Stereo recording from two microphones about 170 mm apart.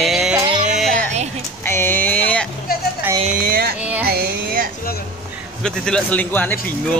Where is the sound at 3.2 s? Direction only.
55° right (ahead or behind).